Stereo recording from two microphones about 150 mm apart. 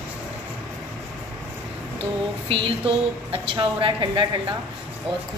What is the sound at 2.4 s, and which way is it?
A woman's voice, 35° right (ahead or behind).